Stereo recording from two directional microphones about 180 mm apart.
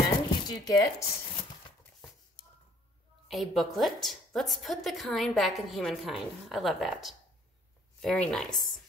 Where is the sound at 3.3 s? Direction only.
Centre (ahead or behind).